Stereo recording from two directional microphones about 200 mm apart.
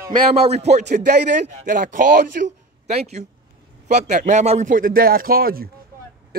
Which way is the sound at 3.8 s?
35° right (ahead or behind).